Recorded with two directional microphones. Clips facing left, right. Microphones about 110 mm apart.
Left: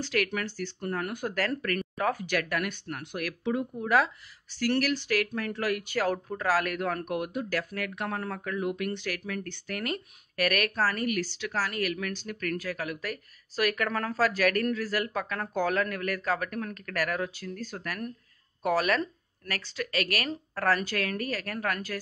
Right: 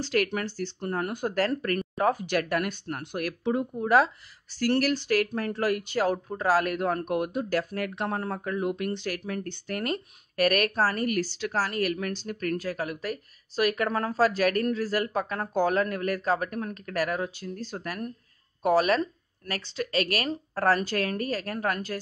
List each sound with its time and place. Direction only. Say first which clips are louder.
0.0 s speech: right 3 dB; 30° right (ahead or behind)